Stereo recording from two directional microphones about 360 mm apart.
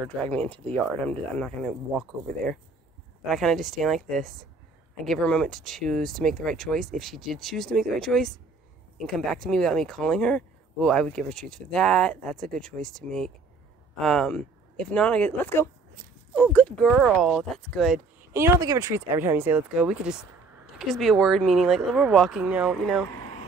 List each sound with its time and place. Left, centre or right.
0.0 s speech: centre